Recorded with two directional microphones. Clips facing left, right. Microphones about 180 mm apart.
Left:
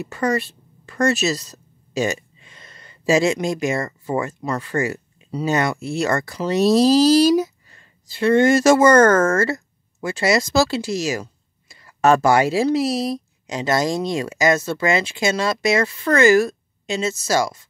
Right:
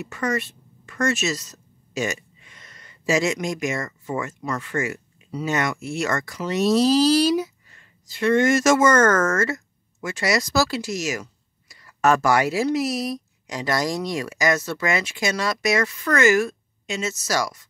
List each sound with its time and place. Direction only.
0.0 s speech: 35° left (ahead or behind)